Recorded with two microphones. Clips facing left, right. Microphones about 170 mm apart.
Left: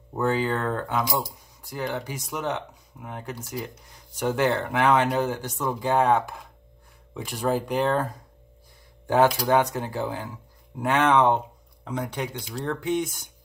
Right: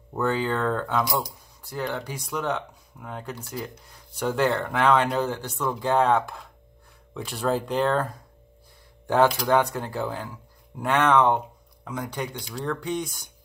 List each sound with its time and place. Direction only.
0.1 s speech: 10° left (ahead or behind)
9.1 s speech: 15° left (ahead or behind)